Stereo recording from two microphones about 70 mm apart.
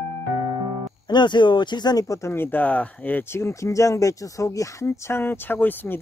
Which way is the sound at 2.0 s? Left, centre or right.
Left.